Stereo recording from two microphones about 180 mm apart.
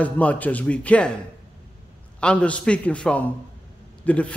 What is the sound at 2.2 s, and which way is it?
A man's voice, 5° left (ahead or behind).